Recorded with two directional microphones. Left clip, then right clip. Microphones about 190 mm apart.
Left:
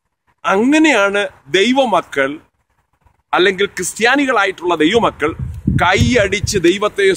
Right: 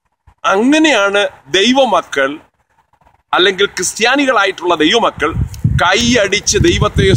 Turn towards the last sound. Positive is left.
turn(degrees=-5)  # may be behind; listen again after turning